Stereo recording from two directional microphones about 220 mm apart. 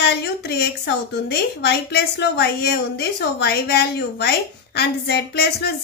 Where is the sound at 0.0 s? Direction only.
50° left (ahead or behind).